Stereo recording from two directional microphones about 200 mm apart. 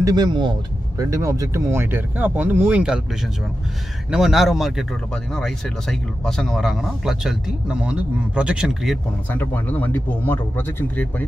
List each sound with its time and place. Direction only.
0.0 s speech: 20° right (ahead or behind)
4.1 s speech: centre (ahead or behind)
9.3 s speech: 10° left (ahead or behind)